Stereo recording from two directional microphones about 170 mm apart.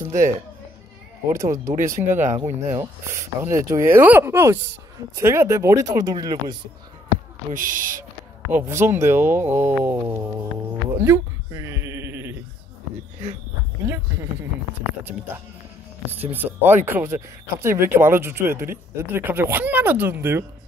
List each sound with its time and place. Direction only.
0.0 s music: 15° right (ahead or behind)
1.3 s speech: 15° right (ahead or behind)
2.3 s speech: 45° right (ahead or behind)
2.7 s speech: 15° right (ahead or behind)
7.5 s speech: 55° right (ahead or behind)
8.5 s speech: 10° right (ahead or behind)
11.0 s a sound: 15° right (ahead or behind)
16.2 s speech: 10° right (ahead or behind)